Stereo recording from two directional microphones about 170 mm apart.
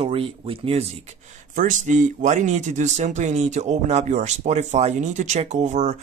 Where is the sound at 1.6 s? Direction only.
45° right (ahead or behind).